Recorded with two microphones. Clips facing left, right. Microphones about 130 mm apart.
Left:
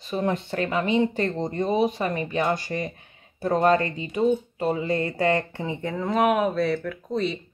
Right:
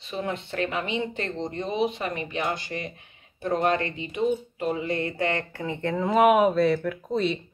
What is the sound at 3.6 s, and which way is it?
Speech, 40° left (ahead or behind).